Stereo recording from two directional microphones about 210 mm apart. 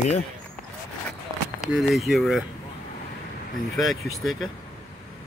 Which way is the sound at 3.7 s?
Centre (ahead or behind).